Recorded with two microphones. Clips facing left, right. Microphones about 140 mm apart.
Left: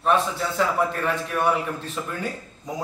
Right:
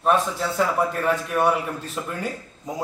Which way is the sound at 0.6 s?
5° right (ahead or behind).